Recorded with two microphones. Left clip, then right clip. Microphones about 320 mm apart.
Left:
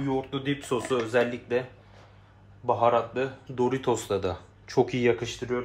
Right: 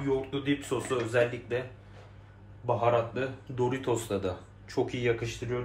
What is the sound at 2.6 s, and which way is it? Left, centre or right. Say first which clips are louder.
Speech: left 4 dB; left.